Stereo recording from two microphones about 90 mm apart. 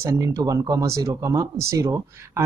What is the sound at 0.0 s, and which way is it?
Speech, 35° right (ahead or behind).